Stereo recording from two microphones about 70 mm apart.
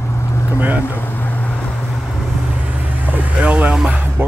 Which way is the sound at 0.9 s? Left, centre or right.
Left.